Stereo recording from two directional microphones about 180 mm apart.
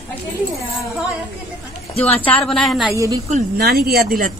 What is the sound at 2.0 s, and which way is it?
Speech, 5° left (ahead or behind).